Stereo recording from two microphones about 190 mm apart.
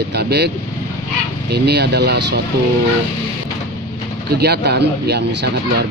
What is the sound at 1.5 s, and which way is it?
Speech, 60° right (ahead or behind).